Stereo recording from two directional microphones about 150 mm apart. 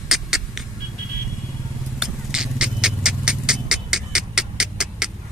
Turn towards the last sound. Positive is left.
turn(degrees=-5)  # may be behind; listen again after turning